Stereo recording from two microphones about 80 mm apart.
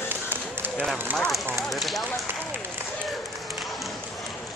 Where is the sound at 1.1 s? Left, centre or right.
Centre.